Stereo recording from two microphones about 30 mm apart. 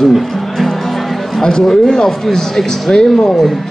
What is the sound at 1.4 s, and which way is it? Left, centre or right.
Speech, centre.